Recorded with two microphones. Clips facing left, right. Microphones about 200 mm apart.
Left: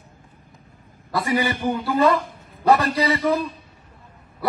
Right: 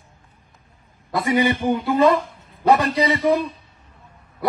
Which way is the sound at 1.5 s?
Centre (ahead or behind).